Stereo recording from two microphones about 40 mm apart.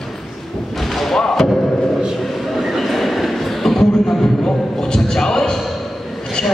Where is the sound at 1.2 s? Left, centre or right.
Centre.